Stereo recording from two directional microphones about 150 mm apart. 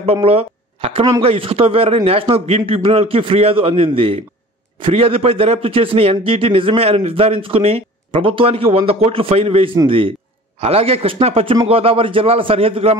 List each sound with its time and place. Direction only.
0.0 s a man's voice: 40° right (ahead or behind)